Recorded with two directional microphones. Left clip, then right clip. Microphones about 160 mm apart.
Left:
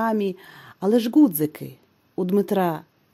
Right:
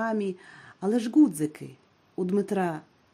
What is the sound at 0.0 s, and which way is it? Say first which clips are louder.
Speech: left 6 dB; 45° left (ahead or behind).